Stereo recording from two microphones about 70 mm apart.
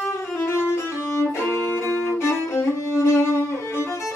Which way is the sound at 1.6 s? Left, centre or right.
Left.